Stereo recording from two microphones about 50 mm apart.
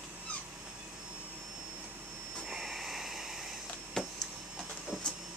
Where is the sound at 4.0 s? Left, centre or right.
Centre.